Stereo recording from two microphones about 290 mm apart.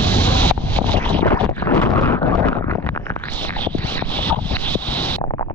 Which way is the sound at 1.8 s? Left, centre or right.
Centre.